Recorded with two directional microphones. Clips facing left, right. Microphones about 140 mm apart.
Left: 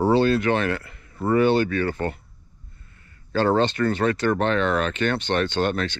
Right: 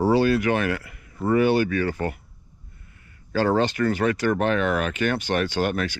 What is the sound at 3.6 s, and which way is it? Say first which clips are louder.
Speech: left 1 dB; 25° left (ahead or behind).